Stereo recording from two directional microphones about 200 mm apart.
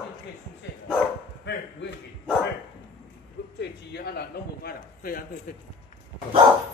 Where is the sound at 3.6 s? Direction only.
55° left (ahead or behind).